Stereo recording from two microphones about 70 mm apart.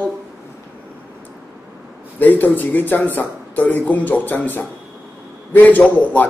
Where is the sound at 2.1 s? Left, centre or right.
Left.